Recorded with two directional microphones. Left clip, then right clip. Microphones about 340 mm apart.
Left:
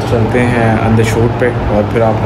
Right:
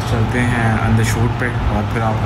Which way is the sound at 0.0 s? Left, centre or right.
Centre.